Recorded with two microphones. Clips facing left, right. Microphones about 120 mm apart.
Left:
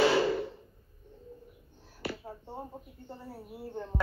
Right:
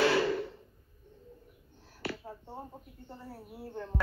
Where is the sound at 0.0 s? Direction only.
15° left (ahead or behind).